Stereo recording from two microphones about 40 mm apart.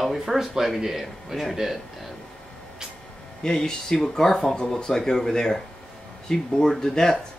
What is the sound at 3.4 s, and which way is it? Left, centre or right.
Speech, centre.